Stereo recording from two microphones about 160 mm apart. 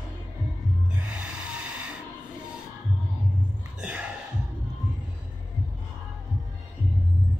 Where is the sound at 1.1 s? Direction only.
10° right (ahead or behind).